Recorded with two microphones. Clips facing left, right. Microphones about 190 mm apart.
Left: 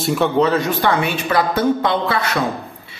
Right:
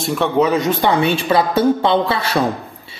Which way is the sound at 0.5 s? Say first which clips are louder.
Right 2 dB; 20° right (ahead or behind).